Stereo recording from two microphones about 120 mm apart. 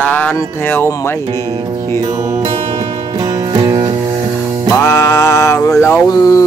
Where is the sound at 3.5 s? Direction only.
35° right (ahead or behind).